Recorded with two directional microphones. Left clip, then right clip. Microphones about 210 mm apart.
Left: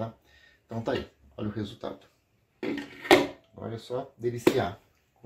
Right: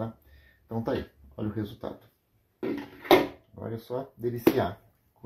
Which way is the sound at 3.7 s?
15° right (ahead or behind).